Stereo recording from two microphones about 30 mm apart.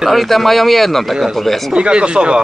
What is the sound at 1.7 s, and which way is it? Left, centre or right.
Speech, right.